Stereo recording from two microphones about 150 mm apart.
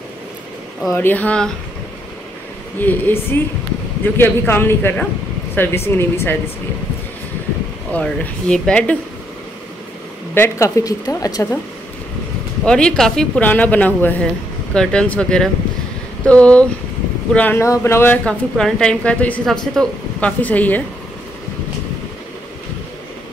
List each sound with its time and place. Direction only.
0.9 s speech: 10° left (ahead or behind)
2.8 s speech: 15° left (ahead or behind)
7.9 s speech: 10° left (ahead or behind)
10.3 s a woman's voice: 20° left (ahead or behind)
12.6 s speech: 5° left (ahead or behind)